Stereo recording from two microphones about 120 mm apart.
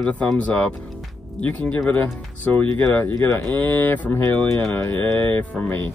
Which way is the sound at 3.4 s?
15° left (ahead or behind).